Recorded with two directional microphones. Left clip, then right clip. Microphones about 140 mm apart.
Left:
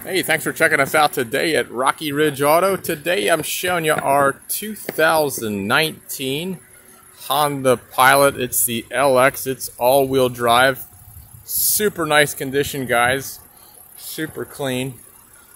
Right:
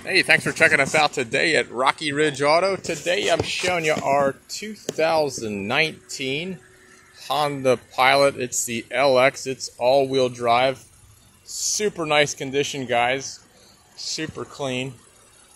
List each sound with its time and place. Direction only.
0.0 s speech: 15° left (ahead or behind)
14.3 s speech: 20° left (ahead or behind)